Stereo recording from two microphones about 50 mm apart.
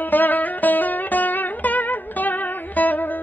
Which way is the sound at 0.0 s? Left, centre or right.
Left.